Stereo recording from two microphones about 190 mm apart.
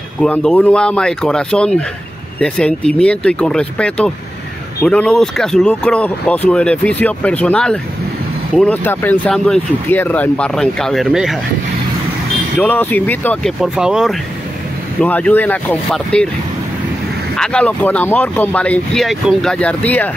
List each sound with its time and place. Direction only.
0.2 s speech: 5° left (ahead or behind)
12.5 s speech: 10° left (ahead or behind)
15.0 s speech: 5° left (ahead or behind)
17.4 s speech: 5° left (ahead or behind)